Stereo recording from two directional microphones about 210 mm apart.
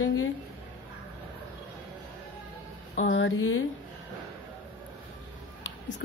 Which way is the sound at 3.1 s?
70° left (ahead or behind).